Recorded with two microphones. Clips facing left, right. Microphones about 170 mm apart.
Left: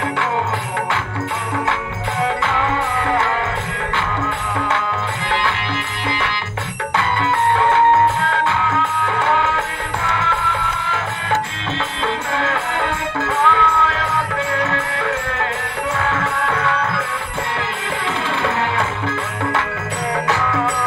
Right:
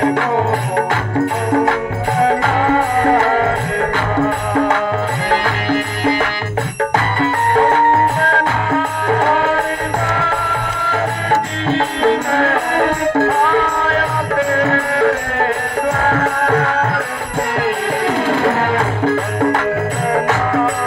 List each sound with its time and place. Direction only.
0.0 s music: 40° right (ahead or behind)
1.5 s music: 40° right (ahead or behind)
12.0 s music: 40° right (ahead or behind)
18.0 s music: 40° right (ahead or behind)